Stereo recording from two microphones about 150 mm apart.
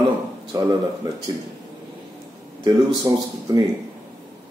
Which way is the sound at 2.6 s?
25° right (ahead or behind).